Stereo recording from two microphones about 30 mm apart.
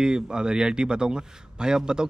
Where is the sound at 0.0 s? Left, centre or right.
Right.